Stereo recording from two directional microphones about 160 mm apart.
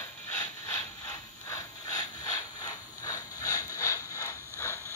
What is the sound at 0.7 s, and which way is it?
Ratchet, 20° left (ahead or behind).